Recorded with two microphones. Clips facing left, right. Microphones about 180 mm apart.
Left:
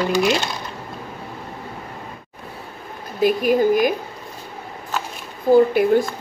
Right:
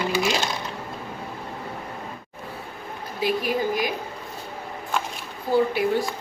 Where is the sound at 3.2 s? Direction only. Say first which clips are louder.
Left 8 dB; 50° left (ahead or behind).